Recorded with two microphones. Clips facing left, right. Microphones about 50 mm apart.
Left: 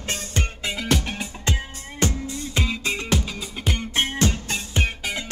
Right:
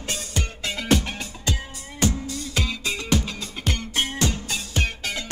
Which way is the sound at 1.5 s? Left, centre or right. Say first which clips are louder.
Left 1 dB; left.